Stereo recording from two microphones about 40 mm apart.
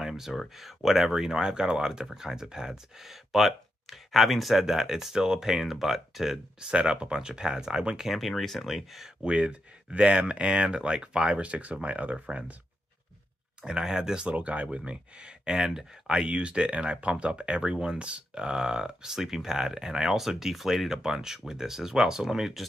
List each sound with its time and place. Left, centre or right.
0.0 s a sound: centre
0.6 s speech: centre
6.7 s speech: right
8.1 s speech: centre
9.2 s speech: right
13.6 s speech: centre
14.2 s speech: right
14.9 s speech: right